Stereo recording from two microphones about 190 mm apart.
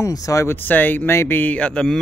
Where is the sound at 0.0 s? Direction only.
15° left (ahead or behind).